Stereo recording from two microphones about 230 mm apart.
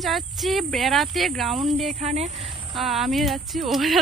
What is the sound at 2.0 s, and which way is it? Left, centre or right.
Speech, right.